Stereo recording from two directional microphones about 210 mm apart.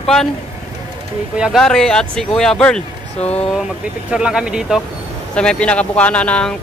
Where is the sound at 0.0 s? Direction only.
Centre (ahead or behind).